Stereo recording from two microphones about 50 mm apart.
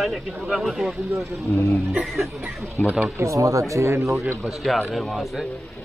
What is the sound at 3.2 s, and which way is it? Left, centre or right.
Speech, right.